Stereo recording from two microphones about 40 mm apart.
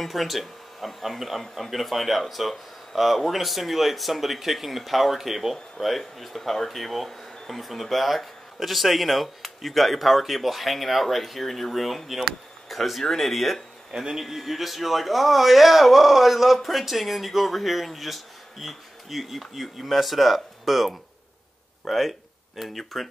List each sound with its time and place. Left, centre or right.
0.0 s speech: centre
13.9 s speech: centre
14.2 s speech: centre